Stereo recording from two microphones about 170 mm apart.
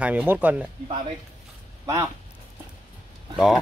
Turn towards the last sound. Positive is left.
turn(degrees=0)  # may be behind; listen again after turning